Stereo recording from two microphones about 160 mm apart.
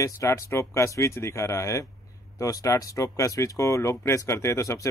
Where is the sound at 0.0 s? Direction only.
20° left (ahead or behind).